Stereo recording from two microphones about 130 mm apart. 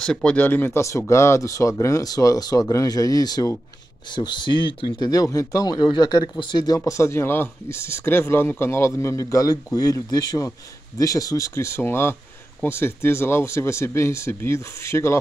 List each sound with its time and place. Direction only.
0.0 s speech: 5° left (ahead or behind)